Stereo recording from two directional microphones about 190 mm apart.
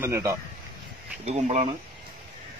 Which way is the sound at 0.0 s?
15° right (ahead or behind).